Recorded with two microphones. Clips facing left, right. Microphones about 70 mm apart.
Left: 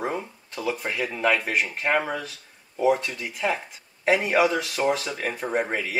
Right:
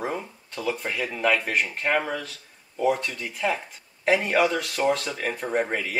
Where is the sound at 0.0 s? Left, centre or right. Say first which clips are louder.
Left 1 dB; centre.